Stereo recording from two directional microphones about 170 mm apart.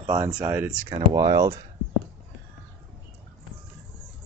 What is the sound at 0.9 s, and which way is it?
Speech, 25° right (ahead or behind).